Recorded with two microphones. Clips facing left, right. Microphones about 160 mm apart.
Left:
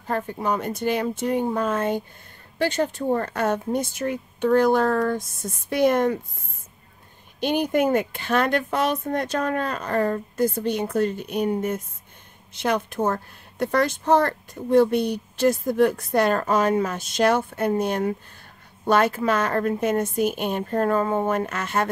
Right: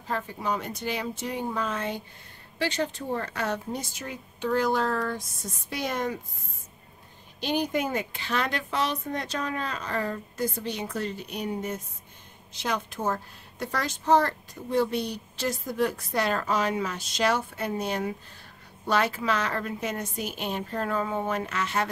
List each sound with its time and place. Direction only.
0.0 s speech: 55° left (ahead or behind)
7.3 s speech: 55° left (ahead or behind)